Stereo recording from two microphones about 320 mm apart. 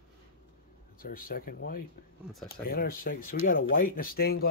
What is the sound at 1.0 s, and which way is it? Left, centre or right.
Speech, left.